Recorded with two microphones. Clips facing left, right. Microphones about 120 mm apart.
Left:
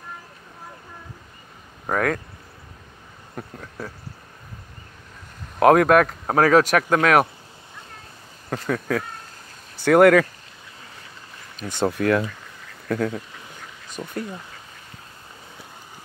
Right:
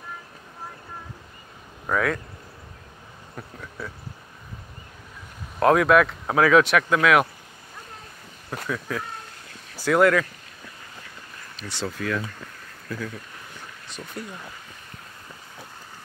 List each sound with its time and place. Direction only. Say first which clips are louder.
1.9 s speech: left 2 dB; 45° left (ahead or behind)
3.3 s speech: left 3 dB; 40° left (ahead or behind)
5.6 s speech: left 3 dB; 55° left (ahead or behind)
8.6 s speech: left 5 dB; 70° left (ahead or behind)
11.6 s speech: left 8 dB; 50° left (ahead or behind); by 13.2 s 70° left (ahead or behind)
14.0 s speech: left 6 dB; 25° left (ahead or behind)